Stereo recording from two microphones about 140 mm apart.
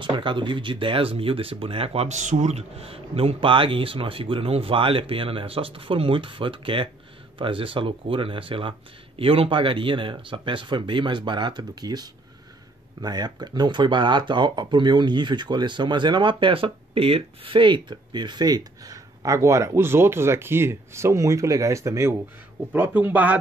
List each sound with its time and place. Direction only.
0.0 s a man's voice: 35° right (ahead or behind); by 23.4 s 10° right (ahead or behind)